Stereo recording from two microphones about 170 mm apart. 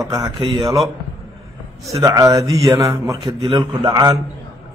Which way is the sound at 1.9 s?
20° right (ahead or behind).